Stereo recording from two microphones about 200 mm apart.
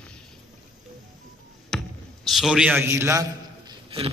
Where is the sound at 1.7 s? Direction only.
Centre (ahead or behind).